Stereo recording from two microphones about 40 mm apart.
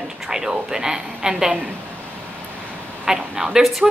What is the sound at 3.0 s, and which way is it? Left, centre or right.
Speech, centre.